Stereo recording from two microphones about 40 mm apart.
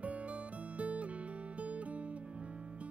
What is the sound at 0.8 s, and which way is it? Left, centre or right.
Music, right.